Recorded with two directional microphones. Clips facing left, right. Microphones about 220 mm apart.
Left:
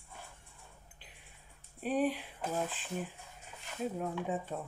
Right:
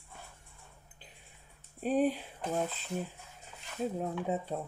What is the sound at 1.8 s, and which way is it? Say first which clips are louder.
Speech: right 3 dB; 45° right (ahead or behind).